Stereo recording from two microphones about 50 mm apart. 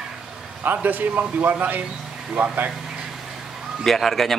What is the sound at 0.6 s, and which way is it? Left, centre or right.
Speech, right.